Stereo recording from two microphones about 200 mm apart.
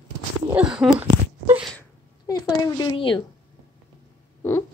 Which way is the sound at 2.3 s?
20° left (ahead or behind).